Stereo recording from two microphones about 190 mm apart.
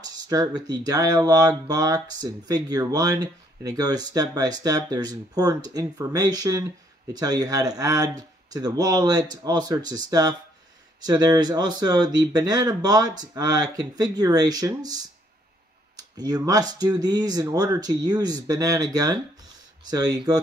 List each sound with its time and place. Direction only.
0.0 s speech: 20° right (ahead or behind)
16.0 s speech: 20° right (ahead or behind)